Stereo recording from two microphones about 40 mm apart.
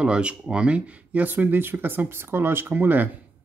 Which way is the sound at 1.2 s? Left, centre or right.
Right.